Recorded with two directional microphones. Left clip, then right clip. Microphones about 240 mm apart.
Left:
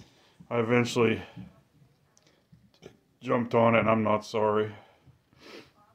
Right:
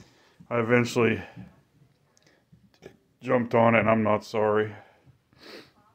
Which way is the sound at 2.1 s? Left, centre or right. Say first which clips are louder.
Right 2 dB; centre.